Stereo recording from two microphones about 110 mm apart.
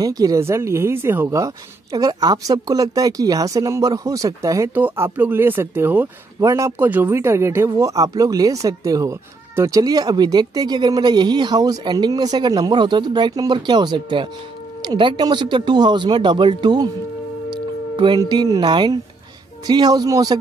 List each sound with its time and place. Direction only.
0.0 s speech: 35° right (ahead or behind)
4.7 s speech: 20° right (ahead or behind); by 16.9 s 40° right (ahead or behind)
17.5 s music: 45° right (ahead or behind)
18.3 s speech: 40° right (ahead or behind)